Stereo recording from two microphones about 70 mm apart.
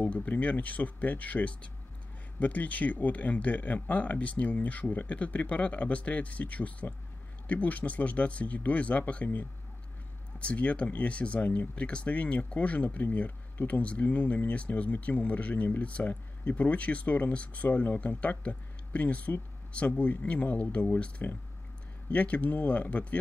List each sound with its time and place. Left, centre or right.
0.0 s speech: left